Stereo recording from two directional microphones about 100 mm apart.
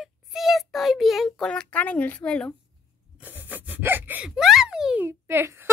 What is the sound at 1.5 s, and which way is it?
Speech, 15° left (ahead or behind).